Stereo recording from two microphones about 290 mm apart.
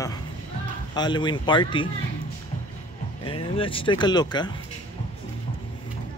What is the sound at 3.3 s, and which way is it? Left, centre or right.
Speech, centre.